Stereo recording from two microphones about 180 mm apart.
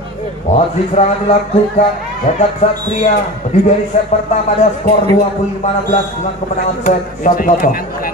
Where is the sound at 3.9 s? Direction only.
40° left (ahead or behind).